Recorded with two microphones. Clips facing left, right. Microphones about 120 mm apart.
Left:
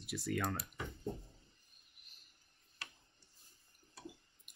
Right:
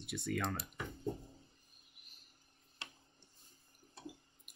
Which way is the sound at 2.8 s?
25° right (ahead or behind).